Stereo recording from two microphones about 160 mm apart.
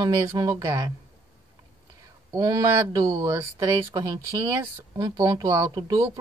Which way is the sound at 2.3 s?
20° right (ahead or behind).